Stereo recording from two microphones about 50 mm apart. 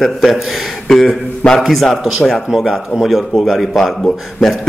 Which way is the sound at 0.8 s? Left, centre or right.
Centre.